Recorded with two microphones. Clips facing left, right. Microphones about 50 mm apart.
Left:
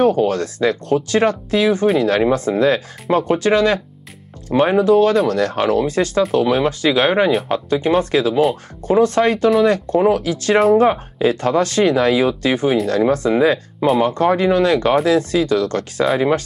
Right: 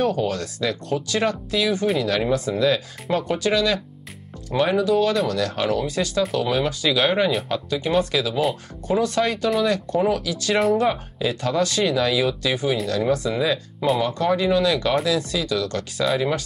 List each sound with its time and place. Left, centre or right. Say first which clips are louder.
0.0 s speech: left 7 dB; left